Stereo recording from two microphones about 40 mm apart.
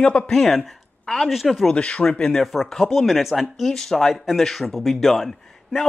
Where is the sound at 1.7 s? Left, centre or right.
Left.